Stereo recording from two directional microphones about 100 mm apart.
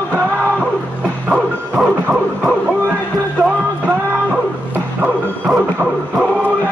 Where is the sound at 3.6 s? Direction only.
15° right (ahead or behind).